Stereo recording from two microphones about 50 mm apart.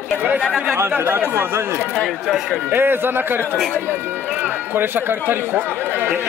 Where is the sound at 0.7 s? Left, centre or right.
Right.